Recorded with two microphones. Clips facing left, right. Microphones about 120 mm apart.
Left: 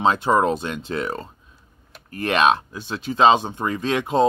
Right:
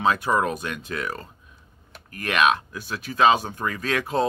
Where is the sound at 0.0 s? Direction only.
25° left (ahead or behind).